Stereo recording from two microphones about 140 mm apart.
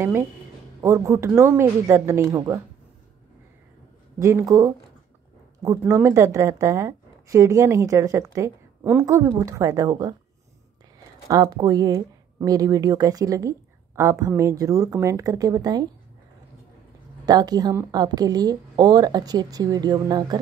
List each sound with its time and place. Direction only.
0.7 s speech: 20° right (ahead or behind)
4.2 s speech: 20° right (ahead or behind)
11.2 s speech: 25° right (ahead or behind)
17.3 s speech: 30° right (ahead or behind)